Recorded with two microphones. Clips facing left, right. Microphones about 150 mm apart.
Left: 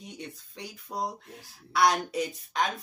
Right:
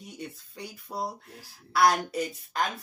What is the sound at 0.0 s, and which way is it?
Speech, centre (ahead or behind).